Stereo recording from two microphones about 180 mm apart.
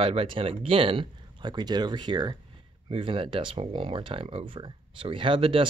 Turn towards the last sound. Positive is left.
turn(degrees=-30)  # may be behind; listen again after turning